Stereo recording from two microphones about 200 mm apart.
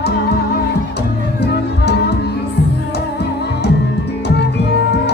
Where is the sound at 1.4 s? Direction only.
55° left (ahead or behind).